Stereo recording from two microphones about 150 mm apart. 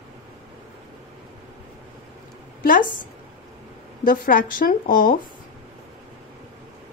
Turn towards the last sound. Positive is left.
turn(degrees=70)  # may be behind; listen again after turning